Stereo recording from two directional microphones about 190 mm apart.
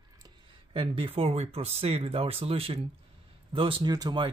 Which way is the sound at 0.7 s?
30° right (ahead or behind).